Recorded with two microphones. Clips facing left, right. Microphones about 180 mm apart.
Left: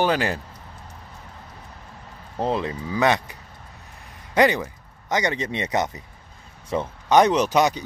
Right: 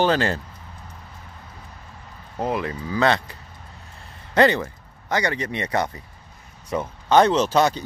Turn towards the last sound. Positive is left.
turn(degrees=15)  # may be behind; listen again after turning